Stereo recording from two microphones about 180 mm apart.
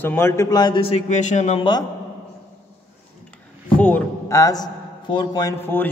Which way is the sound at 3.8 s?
10° left (ahead or behind).